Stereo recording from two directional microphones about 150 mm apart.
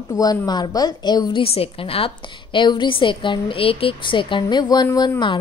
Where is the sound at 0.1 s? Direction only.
25° left (ahead or behind).